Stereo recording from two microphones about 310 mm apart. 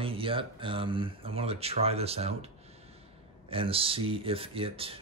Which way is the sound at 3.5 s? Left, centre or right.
Centre.